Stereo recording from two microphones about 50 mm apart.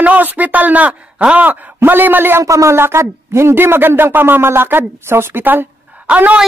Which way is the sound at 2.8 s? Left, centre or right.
Right.